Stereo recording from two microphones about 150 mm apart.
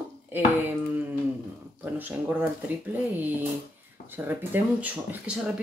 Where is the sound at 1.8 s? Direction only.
10° right (ahead or behind).